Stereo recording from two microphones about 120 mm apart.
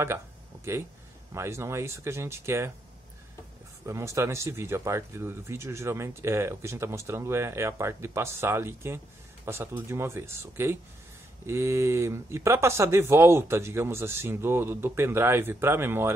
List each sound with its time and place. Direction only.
0.7 s speech: 20° right (ahead or behind)
3.8 s speech: 25° right (ahead or behind)